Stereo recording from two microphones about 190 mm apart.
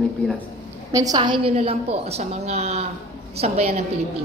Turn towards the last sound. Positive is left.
turn(degrees=-35)  # may be behind; listen again after turning